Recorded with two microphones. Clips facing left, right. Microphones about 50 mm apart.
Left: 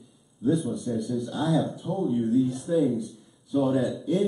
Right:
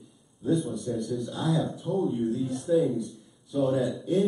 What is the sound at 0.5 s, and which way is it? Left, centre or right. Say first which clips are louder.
Speech: left 2 dB; centre.